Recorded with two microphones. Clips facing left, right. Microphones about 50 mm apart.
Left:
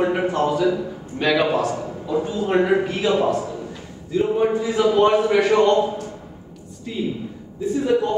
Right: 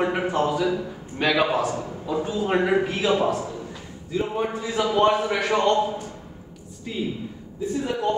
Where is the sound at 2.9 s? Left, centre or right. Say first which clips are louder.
Left 2 dB; centre.